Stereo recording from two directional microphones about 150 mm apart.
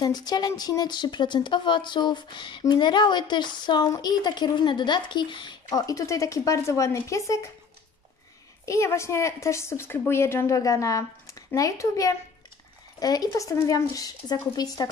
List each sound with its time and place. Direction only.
0.0 s speech: 25° left (ahead or behind)
8.6 s speech: 20° left (ahead or behind)